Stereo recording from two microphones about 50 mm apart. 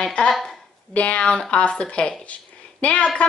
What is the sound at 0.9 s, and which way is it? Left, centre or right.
A woman's voice, left.